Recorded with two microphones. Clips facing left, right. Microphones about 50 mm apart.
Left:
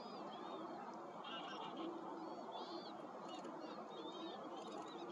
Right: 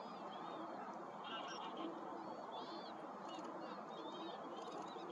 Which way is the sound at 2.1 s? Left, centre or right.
Centre.